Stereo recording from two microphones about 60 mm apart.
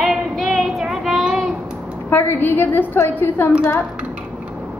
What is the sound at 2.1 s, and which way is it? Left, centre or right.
A woman's voice, left.